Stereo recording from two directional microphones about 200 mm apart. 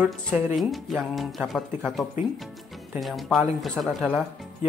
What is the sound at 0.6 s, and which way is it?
Speech, centre (ahead or behind).